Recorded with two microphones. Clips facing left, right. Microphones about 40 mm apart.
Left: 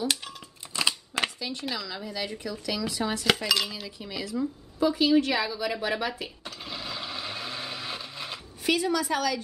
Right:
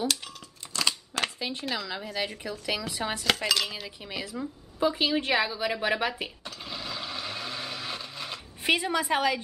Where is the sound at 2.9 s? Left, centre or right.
Right.